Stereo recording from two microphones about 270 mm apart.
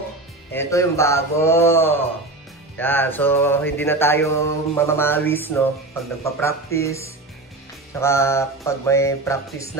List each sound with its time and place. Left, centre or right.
0.5 s mantra: centre